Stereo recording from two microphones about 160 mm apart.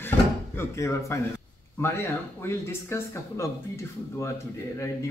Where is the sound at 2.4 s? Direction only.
15° left (ahead or behind).